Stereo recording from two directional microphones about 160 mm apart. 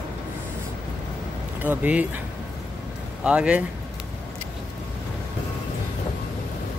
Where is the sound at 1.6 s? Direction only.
10° right (ahead or behind).